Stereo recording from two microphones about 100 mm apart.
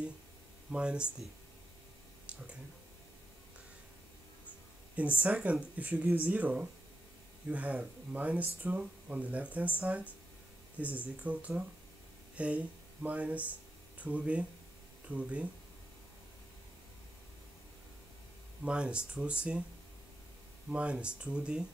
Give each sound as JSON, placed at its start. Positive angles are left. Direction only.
{"t": 0.7, "sound": "speech", "side_deg": -10}
{"t": 5.2, "sound": "speech", "side_deg": -15}
{"t": 18.6, "sound": "speech", "side_deg": -10}
{"t": 20.7, "sound": "speech", "side_deg": -10}